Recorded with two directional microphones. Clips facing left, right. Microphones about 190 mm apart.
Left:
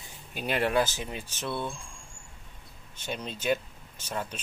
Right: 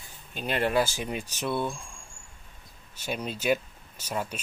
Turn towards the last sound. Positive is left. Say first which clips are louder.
# right 2 dB
turn(degrees=-10)  # may be behind; listen again after turning